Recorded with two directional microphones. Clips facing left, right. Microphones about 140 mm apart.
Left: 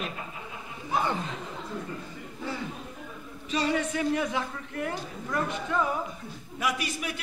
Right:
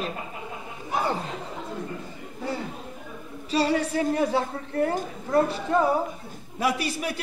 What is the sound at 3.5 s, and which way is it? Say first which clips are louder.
A man's voice: right 4 dB; 35° right (ahead or behind).